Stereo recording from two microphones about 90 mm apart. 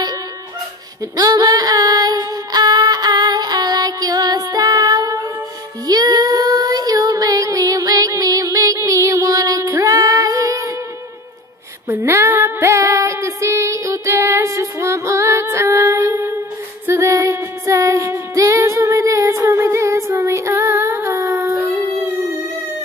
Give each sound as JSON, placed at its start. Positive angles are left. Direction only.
{"t": 1.1, "sound": "a sound", "side_deg": -45}
{"t": 5.9, "sound": "child singing", "side_deg": -45}
{"t": 9.8, "sound": "music", "side_deg": -40}
{"t": 11.9, "sound": "female singing", "side_deg": -30}
{"t": 16.8, "sound": "music", "side_deg": -35}
{"t": 20.2, "sound": "child singing", "side_deg": -30}
{"t": 21.4, "sound": "a sound", "side_deg": -20}